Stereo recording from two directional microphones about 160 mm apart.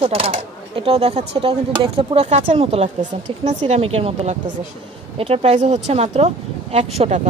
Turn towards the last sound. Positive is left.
turn(degrees=-40)  # may be behind; listen again after turning